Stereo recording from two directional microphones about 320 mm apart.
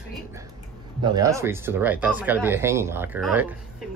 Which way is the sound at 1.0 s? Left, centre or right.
Centre.